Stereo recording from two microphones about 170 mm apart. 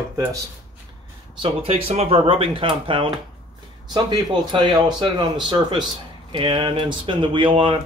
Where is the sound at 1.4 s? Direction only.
35° right (ahead or behind).